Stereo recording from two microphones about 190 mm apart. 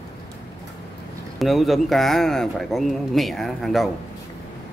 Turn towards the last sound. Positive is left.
turn(degrees=0)  # may be behind; listen again after turning